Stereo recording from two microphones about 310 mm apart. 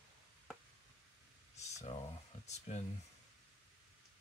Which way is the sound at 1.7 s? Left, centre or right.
Left.